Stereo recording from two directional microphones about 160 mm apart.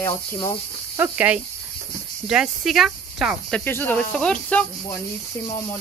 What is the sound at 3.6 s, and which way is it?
Speech, 10° left (ahead or behind).